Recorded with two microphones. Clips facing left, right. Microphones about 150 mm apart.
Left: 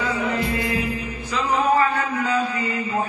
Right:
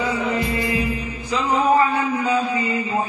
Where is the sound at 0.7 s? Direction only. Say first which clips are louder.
Right 2 dB; 25° right (ahead or behind).